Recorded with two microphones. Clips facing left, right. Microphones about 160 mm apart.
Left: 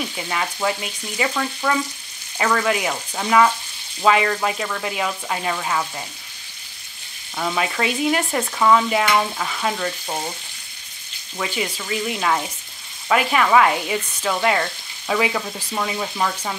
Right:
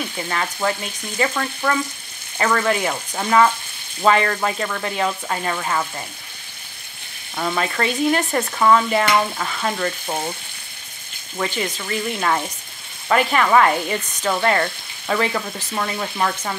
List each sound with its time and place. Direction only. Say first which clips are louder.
0.7 s frying: right 1 dB; 10° left (ahead or behind)
2.9 s frying: even; 5° right (ahead or behind)
7.3 s frying: right 1 dB; 5° left (ahead or behind)
11.4 s frying: right 1 dB; 10° left (ahead or behind)